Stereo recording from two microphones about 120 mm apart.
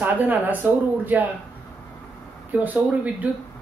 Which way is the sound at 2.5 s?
15° right (ahead or behind).